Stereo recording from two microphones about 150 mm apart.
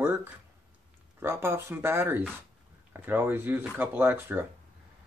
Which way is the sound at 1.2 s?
15° right (ahead or behind).